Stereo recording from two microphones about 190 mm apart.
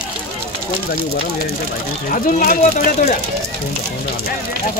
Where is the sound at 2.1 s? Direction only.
45° left (ahead or behind).